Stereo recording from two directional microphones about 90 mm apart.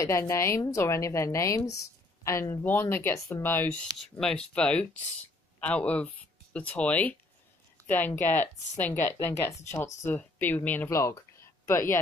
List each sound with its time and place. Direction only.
0.0 s a woman's voice: 35° left (ahead or behind)
4.2 s speech: 5° left (ahead or behind)
7.8 s a sound: 20° left (ahead or behind)
8.3 s speech: 20° left (ahead or behind)
9.0 s speech: 30° left (ahead or behind)
10.9 s speech: 35° left (ahead or behind)